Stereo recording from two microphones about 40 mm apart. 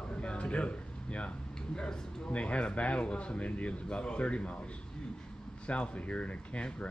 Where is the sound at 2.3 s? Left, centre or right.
Left.